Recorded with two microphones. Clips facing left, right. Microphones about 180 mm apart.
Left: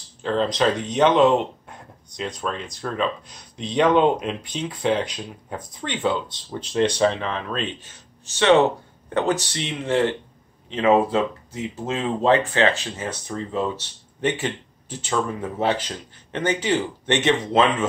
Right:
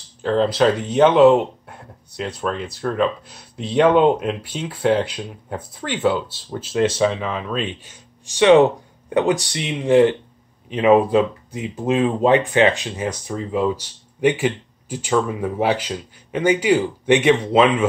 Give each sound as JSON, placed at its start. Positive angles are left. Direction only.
{"t": 0.2, "sound": "speech", "side_deg": -5}